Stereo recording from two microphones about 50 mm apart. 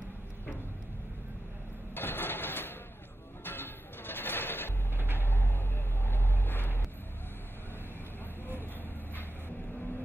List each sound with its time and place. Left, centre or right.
2.0 s vehicle: left
3.4 s music: left
5.1 s vehicle: left